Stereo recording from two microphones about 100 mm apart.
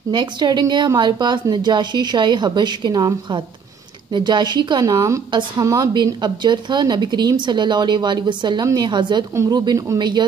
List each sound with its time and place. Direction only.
0.1 s a woman's voice: 45° right (ahead or behind)
6.2 s speech: 50° right (ahead or behind)
9.3 s speech: 30° right (ahead or behind)
9.9 s speech: 50° right (ahead or behind)